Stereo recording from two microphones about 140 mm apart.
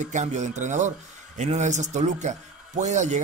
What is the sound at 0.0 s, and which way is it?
Speech, 60° right (ahead or behind).